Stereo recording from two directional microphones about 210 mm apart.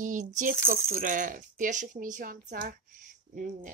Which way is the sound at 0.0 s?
40° right (ahead or behind).